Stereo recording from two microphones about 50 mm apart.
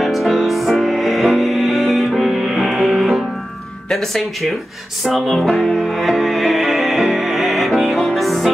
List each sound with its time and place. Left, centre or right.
0.0 s music: centre
3.9 s speech: centre
5.8 s music: centre